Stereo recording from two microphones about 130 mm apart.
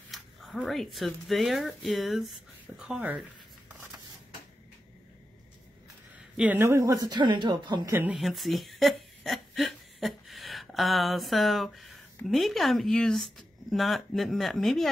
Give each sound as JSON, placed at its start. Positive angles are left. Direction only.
{"t": 0.1, "sound": "speech", "side_deg": 0}
{"t": 6.3, "sound": "a woman's voice", "side_deg": -10}
{"t": 8.1, "sound": "speech", "side_deg": 0}